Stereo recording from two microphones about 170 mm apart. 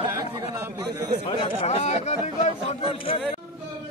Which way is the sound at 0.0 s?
20° right (ahead or behind).